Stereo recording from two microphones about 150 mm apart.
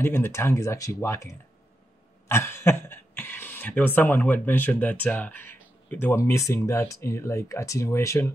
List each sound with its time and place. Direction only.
0.0 s speech: 15° left (ahead or behind)